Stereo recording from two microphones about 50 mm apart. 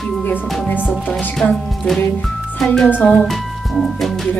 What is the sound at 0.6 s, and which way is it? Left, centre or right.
Speech, left.